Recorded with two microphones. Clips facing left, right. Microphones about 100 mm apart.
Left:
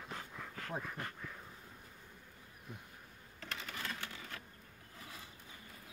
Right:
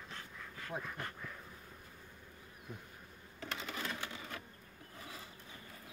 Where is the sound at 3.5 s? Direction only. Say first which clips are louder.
Right 2 dB; 20° right (ahead or behind).